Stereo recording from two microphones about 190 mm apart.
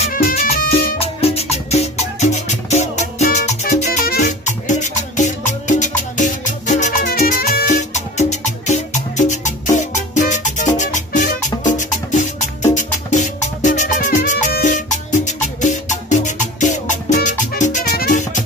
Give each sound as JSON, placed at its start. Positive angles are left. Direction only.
{"t": 0.0, "sound": "music", "side_deg": 40}
{"t": 0.7, "sound": "music", "side_deg": 30}